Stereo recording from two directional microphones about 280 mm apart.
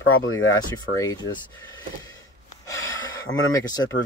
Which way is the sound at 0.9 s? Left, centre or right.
Centre.